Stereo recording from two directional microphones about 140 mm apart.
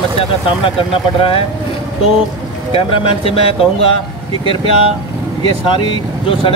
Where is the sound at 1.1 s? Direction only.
40° left (ahead or behind).